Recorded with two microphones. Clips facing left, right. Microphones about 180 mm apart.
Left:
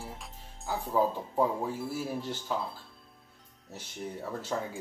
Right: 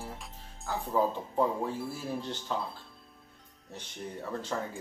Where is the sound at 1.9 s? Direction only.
5° left (ahead or behind).